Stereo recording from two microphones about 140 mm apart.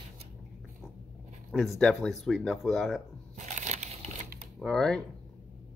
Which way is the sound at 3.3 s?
55° right (ahead or behind).